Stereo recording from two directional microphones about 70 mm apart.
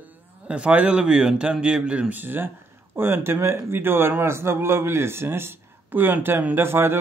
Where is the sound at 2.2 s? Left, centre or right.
Right.